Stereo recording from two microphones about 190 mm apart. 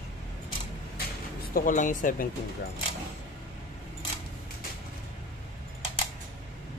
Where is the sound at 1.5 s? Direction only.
45° left (ahead or behind).